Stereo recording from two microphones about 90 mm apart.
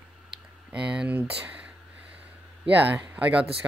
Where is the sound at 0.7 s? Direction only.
10° right (ahead or behind).